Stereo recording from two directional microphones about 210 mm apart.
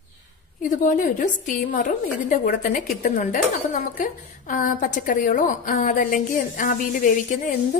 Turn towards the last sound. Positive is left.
turn(degrees=40)  # may be behind; listen again after turning